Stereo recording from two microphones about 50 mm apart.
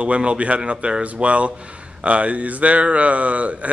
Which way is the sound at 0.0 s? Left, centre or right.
Right.